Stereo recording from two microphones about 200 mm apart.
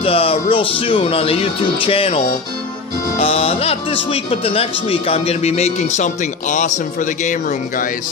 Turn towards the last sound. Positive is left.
turn(degrees=40)  # may be behind; listen again after turning